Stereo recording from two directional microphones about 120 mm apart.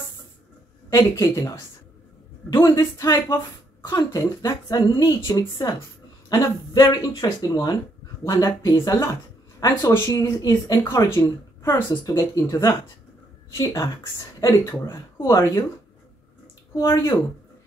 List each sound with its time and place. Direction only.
0.8 s a woman's voice: 25° left (ahead or behind)
14.4 s a woman's voice: 30° left (ahead or behind)
16.9 s speech: 25° left (ahead or behind)